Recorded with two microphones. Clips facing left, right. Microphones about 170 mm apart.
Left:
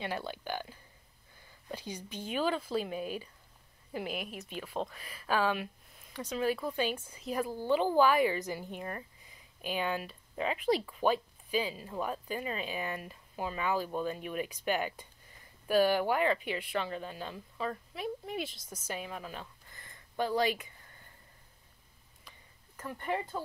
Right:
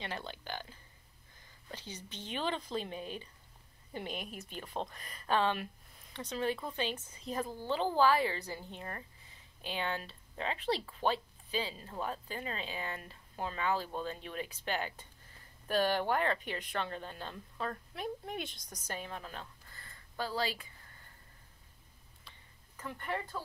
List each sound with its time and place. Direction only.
0.0 s a woman's voice: 10° left (ahead or behind)
19.7 s a sound: 20° left (ahead or behind)
22.8 s speech: 15° left (ahead or behind)